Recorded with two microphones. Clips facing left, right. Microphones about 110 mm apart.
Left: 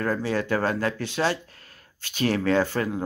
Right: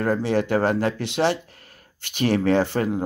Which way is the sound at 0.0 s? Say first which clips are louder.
Right 4 dB; 20° right (ahead or behind).